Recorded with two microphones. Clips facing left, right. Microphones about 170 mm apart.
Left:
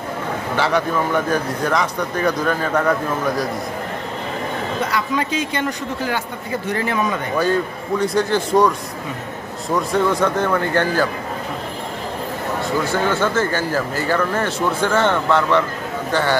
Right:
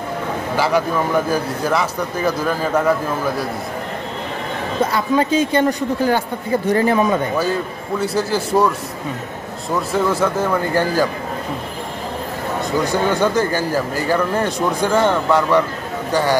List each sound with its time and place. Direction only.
0.6 s speech: 10° right (ahead or behind)
4.9 s speech: 30° right (ahead or behind)
8.0 s speech: 5° right (ahead or behind)
9.8 s speech: 5° right (ahead or behind)
12.8 s speech: 15° right (ahead or behind)